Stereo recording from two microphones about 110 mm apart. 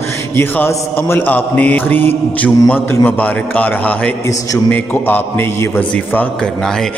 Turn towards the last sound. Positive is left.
turn(degrees=15)  # may be behind; listen again after turning